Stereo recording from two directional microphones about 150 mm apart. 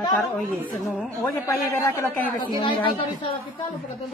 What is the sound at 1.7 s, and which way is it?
Speech, 20° left (ahead or behind).